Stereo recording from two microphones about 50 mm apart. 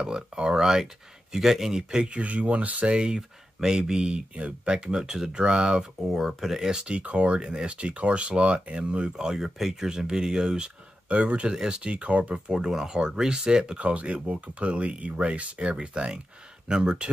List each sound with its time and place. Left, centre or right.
0.0 s speech: centre
2.0 s speech: right
2.9 s speech: centre
5.9 s speech: centre; by 9.1 s right
9.1 s speech: centre; by 12.4 s right
12.4 s speech: centre
13.7 s speech: right